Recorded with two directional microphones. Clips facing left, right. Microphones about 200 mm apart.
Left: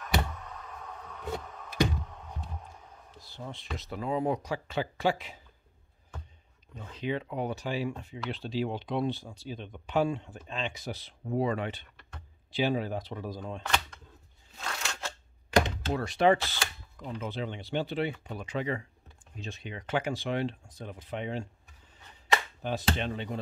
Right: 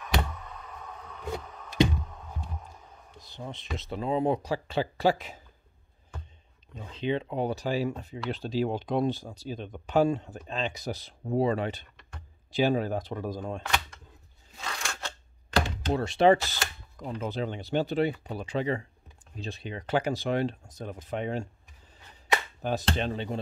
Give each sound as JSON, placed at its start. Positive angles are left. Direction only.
{"t": 0.0, "sound": "a sound", "side_deg": 0}
{"t": 3.2, "sound": "speech", "side_deg": -20}
{"t": 6.9, "sound": "speech", "side_deg": -25}
{"t": 12.4, "sound": "speech", "side_deg": -45}
{"t": 14.6, "sound": "scissors", "side_deg": 0}
{"t": 15.9, "sound": "speech", "side_deg": -30}
{"t": 16.9, "sound": "speech", "side_deg": -40}
{"t": 22.6, "sound": "speech", "side_deg": -45}